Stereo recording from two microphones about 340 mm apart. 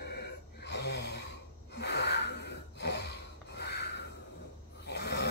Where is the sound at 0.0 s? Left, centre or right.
Left.